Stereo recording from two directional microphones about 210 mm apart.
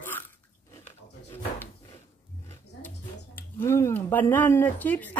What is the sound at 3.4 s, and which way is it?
Speech, 10° left (ahead or behind).